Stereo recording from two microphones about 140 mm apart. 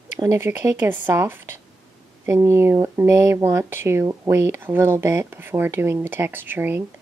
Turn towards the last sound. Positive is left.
turn(degrees=-15)  # may be behind; listen again after turning